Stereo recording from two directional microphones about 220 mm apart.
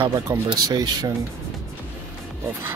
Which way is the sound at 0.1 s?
15° right (ahead or behind).